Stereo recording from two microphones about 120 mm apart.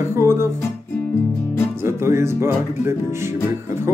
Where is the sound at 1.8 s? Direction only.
20° right (ahead or behind).